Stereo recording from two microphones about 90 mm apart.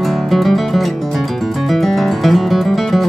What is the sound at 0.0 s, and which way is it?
Music, centre (ahead or behind).